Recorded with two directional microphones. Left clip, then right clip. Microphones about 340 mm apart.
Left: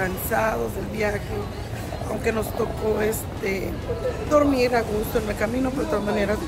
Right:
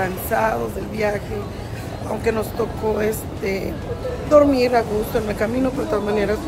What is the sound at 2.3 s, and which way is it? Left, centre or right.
Speech, centre.